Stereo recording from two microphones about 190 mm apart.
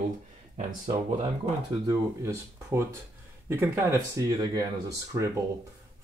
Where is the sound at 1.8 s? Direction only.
15° right (ahead or behind).